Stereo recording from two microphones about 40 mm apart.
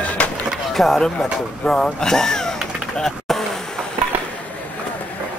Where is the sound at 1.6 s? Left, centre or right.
Centre.